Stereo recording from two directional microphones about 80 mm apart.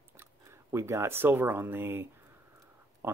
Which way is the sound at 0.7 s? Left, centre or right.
Right.